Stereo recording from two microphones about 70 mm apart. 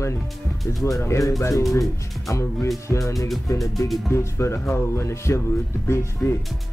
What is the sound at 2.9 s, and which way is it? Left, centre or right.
Speech, centre.